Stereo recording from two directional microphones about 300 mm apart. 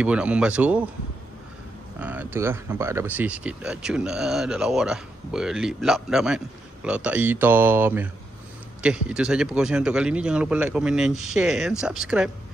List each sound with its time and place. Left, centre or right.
0.0 s speech: centre
2.0 s speech: centre